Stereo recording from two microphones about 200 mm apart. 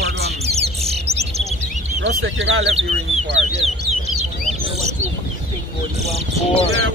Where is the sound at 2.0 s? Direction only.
70° right (ahead or behind).